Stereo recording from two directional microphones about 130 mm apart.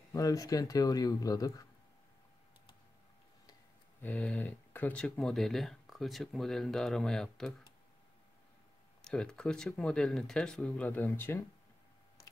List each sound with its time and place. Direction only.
0.1 s speech: 25° left (ahead or behind)
4.0 s speech: 10° left (ahead or behind)
9.0 s speech: 5° left (ahead or behind)